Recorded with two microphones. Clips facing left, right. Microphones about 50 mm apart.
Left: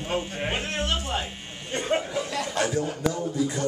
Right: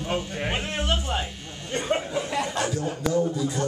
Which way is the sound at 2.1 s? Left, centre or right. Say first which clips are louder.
Right 2 dB; right.